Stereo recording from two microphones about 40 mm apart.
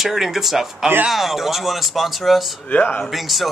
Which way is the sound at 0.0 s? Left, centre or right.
Centre.